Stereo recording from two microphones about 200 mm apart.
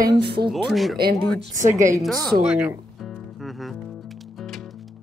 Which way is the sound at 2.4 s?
5° right (ahead or behind).